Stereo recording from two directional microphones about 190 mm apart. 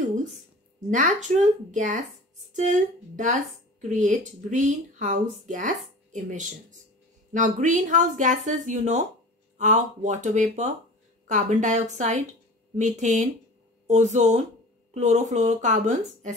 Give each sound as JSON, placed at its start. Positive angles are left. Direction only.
{"t": 0.8, "sound": "speech", "side_deg": -40}